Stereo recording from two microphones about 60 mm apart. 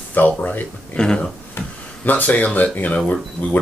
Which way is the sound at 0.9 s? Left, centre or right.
Centre.